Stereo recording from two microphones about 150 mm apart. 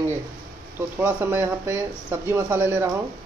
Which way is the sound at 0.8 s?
15° right (ahead or behind).